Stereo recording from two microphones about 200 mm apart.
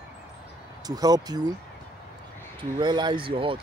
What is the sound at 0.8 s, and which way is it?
Speech, 20° right (ahead or behind).